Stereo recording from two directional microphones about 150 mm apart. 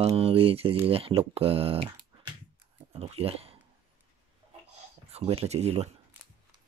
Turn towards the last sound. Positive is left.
turn(degrees=-45)  # may be behind; listen again after turning